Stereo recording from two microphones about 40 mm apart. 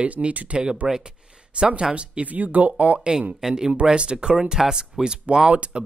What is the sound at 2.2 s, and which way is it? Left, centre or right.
Speech, right.